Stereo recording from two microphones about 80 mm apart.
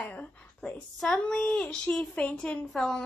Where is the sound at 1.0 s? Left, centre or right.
Centre.